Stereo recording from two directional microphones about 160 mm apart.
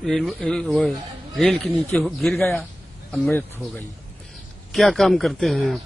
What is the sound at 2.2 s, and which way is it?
Speech, centre (ahead or behind).